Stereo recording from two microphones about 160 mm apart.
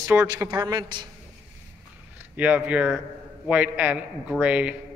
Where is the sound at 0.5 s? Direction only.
25° right (ahead or behind).